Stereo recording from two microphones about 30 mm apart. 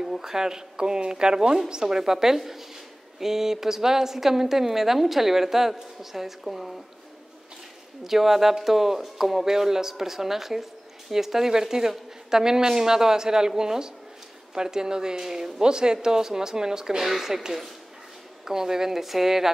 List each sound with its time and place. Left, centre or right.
0.2 s a woman's voice: centre
8.0 s a woman's voice: centre
9.5 s a woman's voice: centre
17.0 s a woman's voice: centre